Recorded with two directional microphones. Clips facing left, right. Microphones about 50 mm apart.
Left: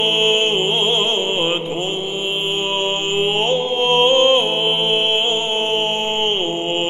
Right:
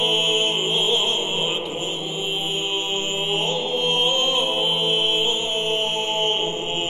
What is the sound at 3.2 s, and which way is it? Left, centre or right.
Music, left.